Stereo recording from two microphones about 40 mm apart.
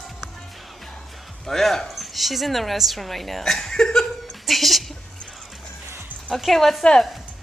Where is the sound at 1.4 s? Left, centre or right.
Centre.